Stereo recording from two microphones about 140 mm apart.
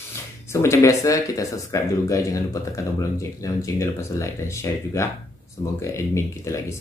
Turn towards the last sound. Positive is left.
turn(degrees=20)  # may be behind; listen again after turning